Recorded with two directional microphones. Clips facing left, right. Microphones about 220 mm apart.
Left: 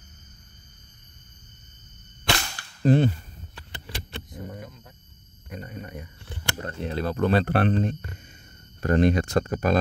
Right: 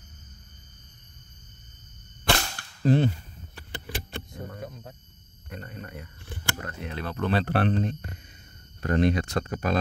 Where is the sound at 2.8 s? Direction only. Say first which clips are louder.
Left 2 dB; 55° left (ahead or behind).